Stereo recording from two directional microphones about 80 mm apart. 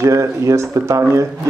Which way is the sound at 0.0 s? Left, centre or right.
Right.